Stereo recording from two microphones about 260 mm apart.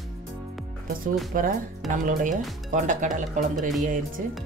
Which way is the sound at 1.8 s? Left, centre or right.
Centre.